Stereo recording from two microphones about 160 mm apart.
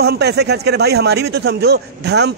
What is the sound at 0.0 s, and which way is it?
A man's voice, 90° right.